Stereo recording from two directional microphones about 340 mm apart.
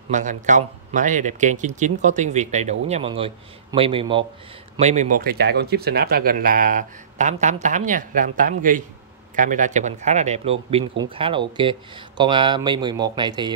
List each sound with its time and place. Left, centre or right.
0.1 s speech: right